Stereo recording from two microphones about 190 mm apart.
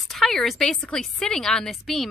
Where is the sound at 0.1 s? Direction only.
Centre (ahead or behind).